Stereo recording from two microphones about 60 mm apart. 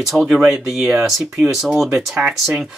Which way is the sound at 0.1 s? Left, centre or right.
Left.